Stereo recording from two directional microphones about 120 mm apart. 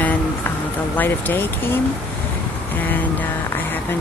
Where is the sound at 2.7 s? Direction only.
15° left (ahead or behind).